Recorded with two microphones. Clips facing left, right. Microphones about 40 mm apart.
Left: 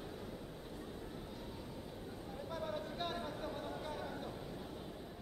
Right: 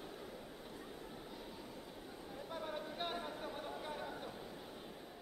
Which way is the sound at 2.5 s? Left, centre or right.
Centre.